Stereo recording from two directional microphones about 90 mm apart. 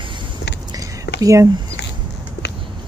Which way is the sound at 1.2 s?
40° right (ahead or behind).